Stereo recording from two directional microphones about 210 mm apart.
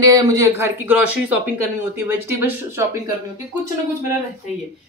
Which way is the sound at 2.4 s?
10° right (ahead or behind).